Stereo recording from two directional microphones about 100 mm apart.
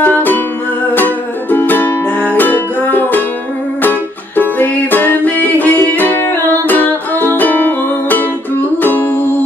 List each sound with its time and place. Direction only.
0.0 s music: 20° left (ahead or behind)